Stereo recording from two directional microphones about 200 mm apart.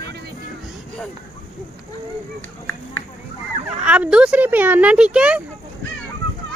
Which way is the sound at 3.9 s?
5° right (ahead or behind).